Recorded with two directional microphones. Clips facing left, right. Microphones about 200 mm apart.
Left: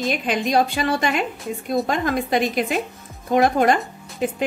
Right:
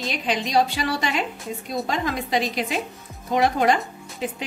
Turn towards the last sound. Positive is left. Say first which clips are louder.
# left 5 dB
turn(degrees=50)  # may be behind; listen again after turning